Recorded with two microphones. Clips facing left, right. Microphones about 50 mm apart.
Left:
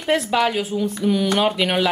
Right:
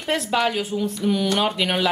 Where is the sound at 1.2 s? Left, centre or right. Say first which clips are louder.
Left 2 dB; centre.